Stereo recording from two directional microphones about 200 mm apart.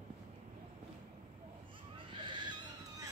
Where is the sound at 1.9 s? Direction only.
25° right (ahead or behind).